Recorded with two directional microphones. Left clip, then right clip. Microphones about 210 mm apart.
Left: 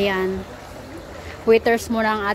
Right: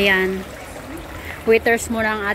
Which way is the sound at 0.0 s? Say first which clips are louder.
Right 5 dB; 5° left (ahead or behind).